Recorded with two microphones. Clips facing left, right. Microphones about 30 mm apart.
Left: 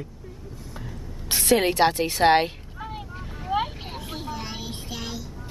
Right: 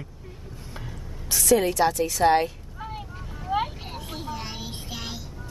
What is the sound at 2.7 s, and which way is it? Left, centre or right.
Vehicle, centre.